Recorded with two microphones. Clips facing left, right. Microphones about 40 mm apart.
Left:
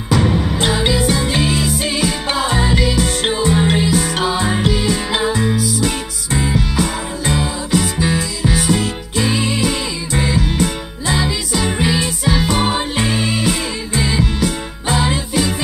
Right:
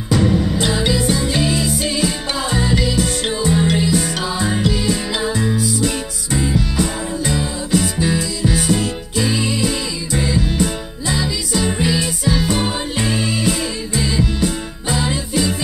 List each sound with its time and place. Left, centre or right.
0.3 s music: left
0.6 s music: left